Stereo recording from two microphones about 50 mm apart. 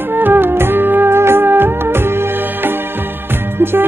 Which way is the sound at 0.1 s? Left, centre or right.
Right.